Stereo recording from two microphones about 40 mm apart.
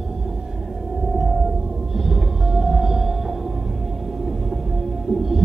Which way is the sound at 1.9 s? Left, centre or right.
Centre.